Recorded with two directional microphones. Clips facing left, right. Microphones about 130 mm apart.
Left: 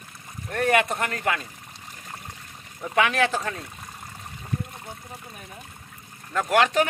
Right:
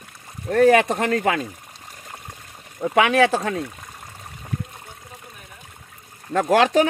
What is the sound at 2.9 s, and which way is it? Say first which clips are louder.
Speech: right 5 dB; 70° right (ahead or behind).